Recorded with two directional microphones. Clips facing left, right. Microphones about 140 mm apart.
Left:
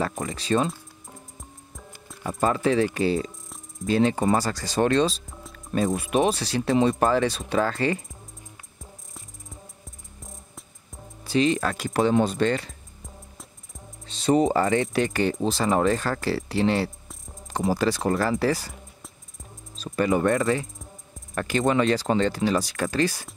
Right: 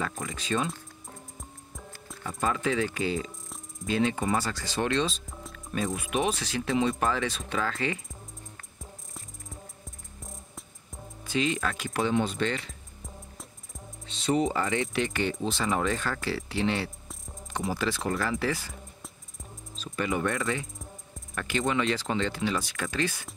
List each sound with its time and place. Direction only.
0.2 s speech: 40° left (ahead or behind)
2.2 s speech: 40° left (ahead or behind)
5.2 s music: centre (ahead or behind)
5.7 s speech: 40° left (ahead or behind)
10.2 s music: centre (ahead or behind)
11.2 s speech: 35° left (ahead or behind)
13.0 s music: centre (ahead or behind)
14.0 s speech: 40° left (ahead or behind)
19.0 s music: centre (ahead or behind)
19.8 s speech: 40° left (ahead or behind)